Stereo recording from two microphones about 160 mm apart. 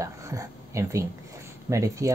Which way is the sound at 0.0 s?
20° right (ahead or behind).